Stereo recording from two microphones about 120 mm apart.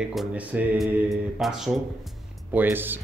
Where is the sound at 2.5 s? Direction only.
15° right (ahead or behind).